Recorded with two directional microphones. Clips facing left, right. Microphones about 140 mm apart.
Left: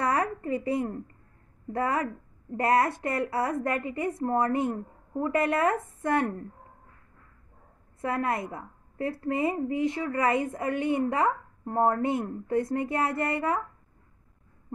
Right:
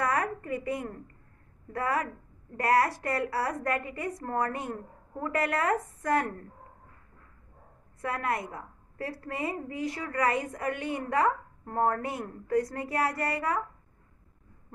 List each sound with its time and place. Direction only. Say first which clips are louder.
0.0 s a sound: left 2 dB; 25° left (ahead or behind)
1.7 s a woman's voice: left 2 dB; 25° left (ahead or behind)
8.0 s a woman's voice: left 3 dB; 25° left (ahead or behind)